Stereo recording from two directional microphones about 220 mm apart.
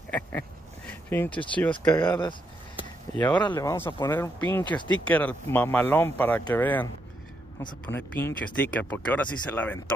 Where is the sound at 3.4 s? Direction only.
15° left (ahead or behind).